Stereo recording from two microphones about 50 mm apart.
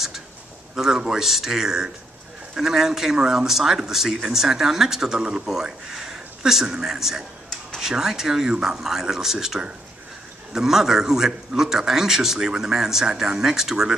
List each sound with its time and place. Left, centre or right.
0.7 s speech: centre